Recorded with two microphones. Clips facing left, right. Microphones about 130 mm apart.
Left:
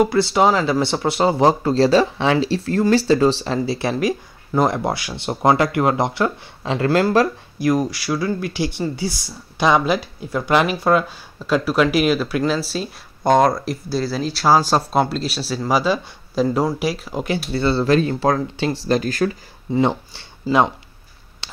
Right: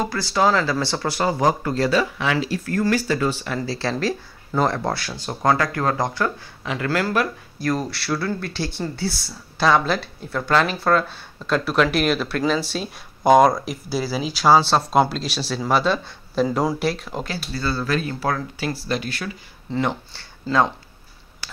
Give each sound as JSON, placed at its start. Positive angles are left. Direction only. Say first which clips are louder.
{"t": 0.1, "sound": "speech", "louder": "left 4 dB", "side_deg": 20}
{"t": 3.9, "sound": "speech", "louder": "left 3 dB", "side_deg": 10}
{"t": 7.5, "sound": "speech", "louder": "left 5 dB", "side_deg": 15}
{"t": 17.5, "sound": "speech", "louder": "left 7 dB", "side_deg": 25}
{"t": 18.9, "sound": "speech", "louder": "left 8 dB", "side_deg": 40}
{"t": 19.7, "sound": "speech", "louder": "left 5 dB", "side_deg": 20}
{"t": 20.5, "sound": "speech", "louder": "left 3 dB", "side_deg": 10}